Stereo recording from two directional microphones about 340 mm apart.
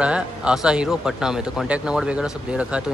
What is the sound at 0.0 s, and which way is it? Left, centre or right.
Speech, centre.